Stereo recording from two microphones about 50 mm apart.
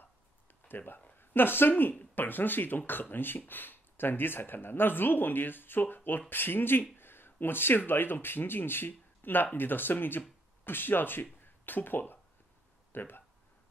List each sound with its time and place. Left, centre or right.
0.7 s speech: left